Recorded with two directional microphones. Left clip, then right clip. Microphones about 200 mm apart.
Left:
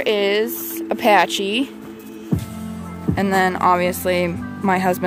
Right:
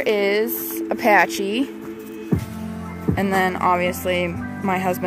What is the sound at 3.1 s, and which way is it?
Speech, 10° left (ahead or behind).